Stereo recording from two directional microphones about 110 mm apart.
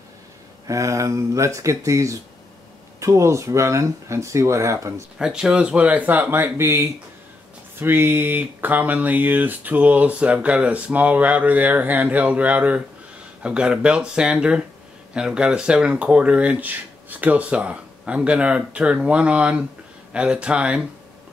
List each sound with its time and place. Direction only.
0.7 s speech: 30° right (ahead or behind)
5.2 s speech: 5° right (ahead or behind)